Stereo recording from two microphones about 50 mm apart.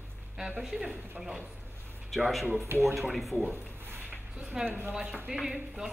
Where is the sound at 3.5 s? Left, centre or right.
Right.